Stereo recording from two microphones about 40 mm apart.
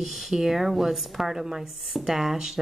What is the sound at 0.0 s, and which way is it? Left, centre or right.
Speech, centre.